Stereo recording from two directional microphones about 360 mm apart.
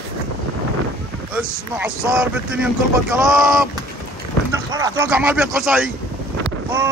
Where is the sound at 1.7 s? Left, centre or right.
Centre.